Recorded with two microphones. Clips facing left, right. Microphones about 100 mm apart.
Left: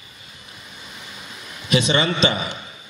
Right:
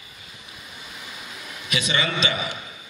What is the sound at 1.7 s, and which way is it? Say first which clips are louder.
Speech: left 6 dB; 30° left (ahead or behind).